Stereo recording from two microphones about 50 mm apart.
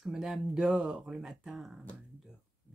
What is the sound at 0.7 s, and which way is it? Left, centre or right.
Speech, centre.